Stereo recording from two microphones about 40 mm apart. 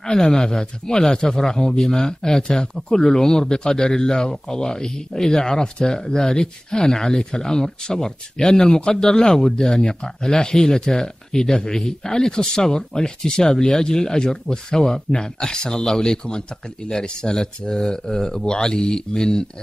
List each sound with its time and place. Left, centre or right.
0.0 s speech: centre